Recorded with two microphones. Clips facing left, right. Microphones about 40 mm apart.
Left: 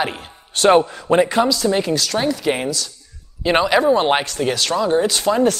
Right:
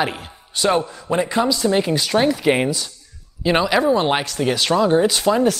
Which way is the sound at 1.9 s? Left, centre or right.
Centre.